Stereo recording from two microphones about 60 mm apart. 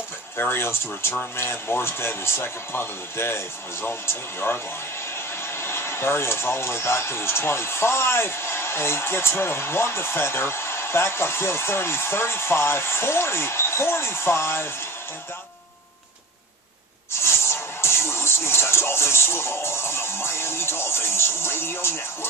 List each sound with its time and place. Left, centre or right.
0.4 s speech: left
17.1 s music: left